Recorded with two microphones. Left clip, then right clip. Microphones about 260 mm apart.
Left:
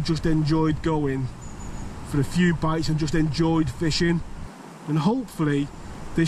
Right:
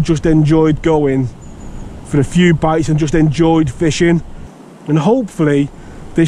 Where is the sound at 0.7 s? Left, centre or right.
Centre.